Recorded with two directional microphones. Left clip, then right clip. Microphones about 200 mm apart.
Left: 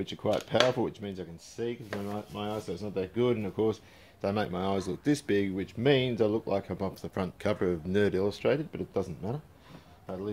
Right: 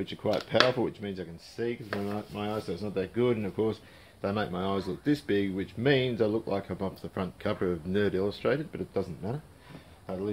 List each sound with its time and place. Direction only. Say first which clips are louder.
0.0 s speech: even; 35° left (ahead or behind)
4.2 s speech: even; 40° left (ahead or behind)
10.0 s speech: right 3 dB; 15° left (ahead or behind)